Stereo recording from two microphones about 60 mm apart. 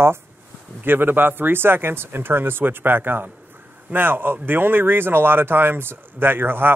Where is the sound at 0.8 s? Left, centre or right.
Right.